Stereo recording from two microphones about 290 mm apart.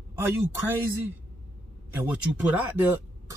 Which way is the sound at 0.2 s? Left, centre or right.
Centre.